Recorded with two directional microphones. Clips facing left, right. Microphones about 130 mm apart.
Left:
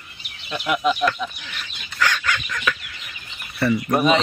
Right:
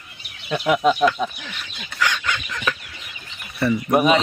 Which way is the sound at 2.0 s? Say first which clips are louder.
Left 1 dB; 20° right (ahead or behind).